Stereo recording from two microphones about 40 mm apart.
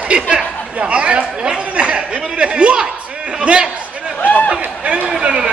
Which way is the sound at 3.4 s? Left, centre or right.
Right.